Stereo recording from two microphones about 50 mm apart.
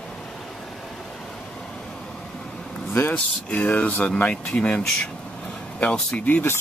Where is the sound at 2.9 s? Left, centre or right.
Left.